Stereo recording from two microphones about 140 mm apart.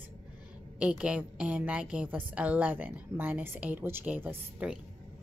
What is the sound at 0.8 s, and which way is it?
A woman's voice, 10° right (ahead or behind).